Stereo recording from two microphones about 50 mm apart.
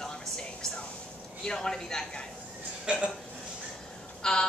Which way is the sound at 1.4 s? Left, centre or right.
Centre.